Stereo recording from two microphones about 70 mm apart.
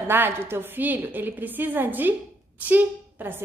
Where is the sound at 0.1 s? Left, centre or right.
Right.